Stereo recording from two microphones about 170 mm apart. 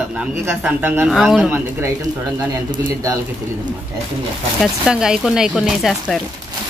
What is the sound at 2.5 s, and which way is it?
Speech, 25° right (ahead or behind).